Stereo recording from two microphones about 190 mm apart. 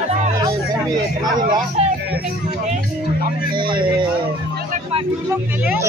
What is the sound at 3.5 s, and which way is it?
Speech, 25° right (ahead or behind).